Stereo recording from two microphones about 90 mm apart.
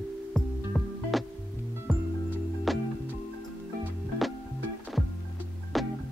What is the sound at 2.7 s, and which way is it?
Music, centre (ahead or behind).